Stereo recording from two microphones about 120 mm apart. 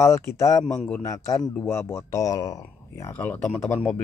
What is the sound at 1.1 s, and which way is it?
Speech, 30° left (ahead or behind).